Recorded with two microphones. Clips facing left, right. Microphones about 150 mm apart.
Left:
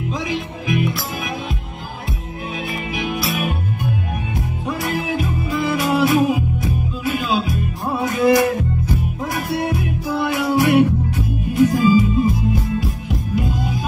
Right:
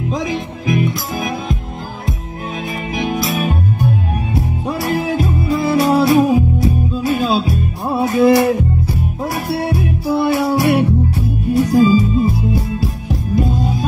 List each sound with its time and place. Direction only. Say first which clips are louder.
0.1 s music: right 4 dB; 40° right (ahead or behind)
2.9 s music: right 6 dB; 45° right (ahead or behind)
4.3 s music: right 5 dB; 35° right (ahead or behind)